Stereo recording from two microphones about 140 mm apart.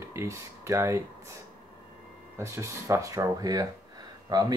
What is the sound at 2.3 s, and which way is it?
Speech, 20° right (ahead or behind).